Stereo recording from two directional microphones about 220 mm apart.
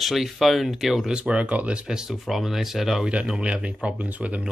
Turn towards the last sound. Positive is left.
turn(degrees=-5)  # may be behind; listen again after turning